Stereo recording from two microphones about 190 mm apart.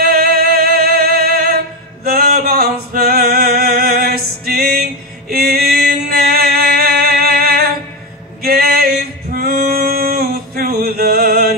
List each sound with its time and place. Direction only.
0.0 s music: 55° right (ahead or behind)
7.2 s a sound: 55° right (ahead or behind)
8.4 s male singing: 55° right (ahead or behind)